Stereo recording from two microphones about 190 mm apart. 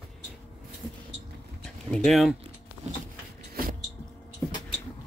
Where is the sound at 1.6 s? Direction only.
5° left (ahead or behind).